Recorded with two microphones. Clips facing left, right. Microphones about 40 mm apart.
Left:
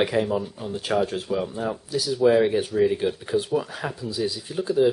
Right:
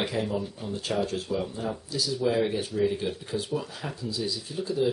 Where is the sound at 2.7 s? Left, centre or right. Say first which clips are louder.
Left 5 dB; left.